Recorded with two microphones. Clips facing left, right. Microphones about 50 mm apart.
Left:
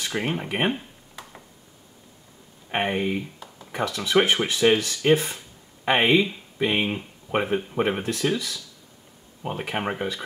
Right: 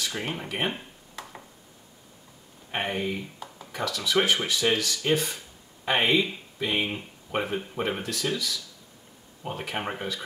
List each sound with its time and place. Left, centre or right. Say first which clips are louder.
0.0 s speech: left 5 dB; left
1.2 s a sound: right 1 dB; centre
2.7 s speech: left 4 dB; centre